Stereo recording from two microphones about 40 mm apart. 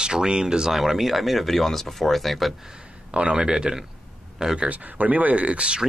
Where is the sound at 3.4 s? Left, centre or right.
Right.